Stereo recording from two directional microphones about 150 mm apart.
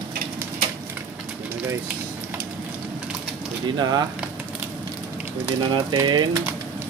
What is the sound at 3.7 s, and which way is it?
Speech, 25° right (ahead or behind).